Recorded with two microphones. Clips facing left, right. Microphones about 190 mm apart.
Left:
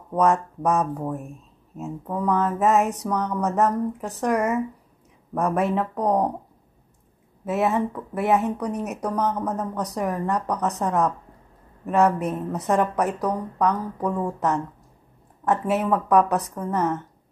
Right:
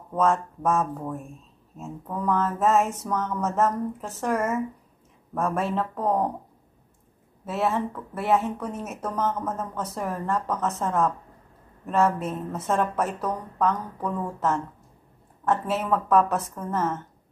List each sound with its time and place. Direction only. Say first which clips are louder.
0.1 s a woman's voice: left 3 dB; 15° left (ahead or behind)
7.4 s a woman's voice: left 3 dB; 20° left (ahead or behind)